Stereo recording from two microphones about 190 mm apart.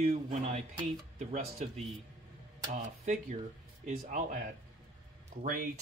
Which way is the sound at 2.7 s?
40° right (ahead or behind).